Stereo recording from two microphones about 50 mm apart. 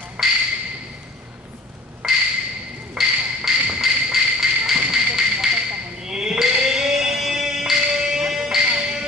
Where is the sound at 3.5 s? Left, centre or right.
Centre.